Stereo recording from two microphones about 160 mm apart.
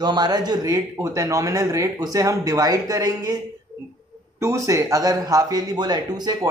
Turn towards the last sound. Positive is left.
turn(degrees=-25)  # may be behind; listen again after turning